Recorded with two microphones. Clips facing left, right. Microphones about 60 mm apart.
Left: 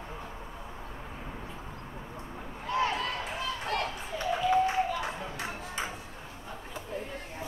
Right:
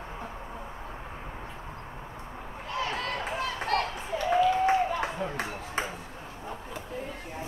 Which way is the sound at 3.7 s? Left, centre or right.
Right.